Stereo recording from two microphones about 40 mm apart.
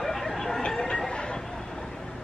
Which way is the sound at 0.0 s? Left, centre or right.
Centre.